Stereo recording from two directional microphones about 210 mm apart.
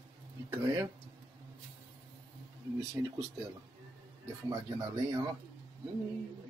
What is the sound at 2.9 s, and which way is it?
Speech, 15° right (ahead or behind).